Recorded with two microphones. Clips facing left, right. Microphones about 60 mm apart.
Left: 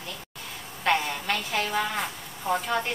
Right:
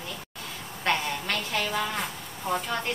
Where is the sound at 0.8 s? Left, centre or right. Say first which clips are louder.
Left 2 dB; centre.